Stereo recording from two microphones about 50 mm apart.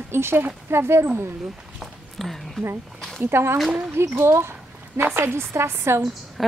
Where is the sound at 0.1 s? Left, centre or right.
Right.